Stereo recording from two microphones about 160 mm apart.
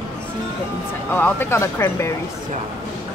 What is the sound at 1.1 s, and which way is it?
Speech, 15° left (ahead or behind).